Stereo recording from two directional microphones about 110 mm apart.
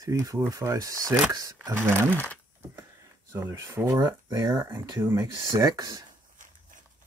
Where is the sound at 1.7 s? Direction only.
20° right (ahead or behind).